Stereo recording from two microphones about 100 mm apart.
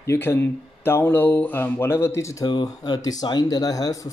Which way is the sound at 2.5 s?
45° left (ahead or behind).